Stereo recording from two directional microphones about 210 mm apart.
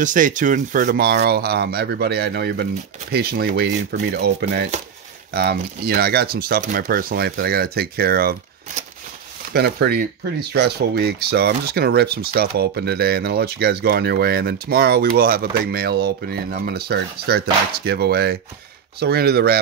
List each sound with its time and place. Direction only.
0.0 s speech: 40° right (ahead or behind)